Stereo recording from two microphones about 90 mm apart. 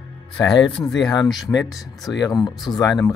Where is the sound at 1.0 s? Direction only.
45° left (ahead or behind).